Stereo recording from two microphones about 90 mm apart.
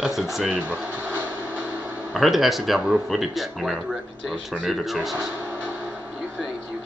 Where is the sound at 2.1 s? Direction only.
Centre (ahead or behind).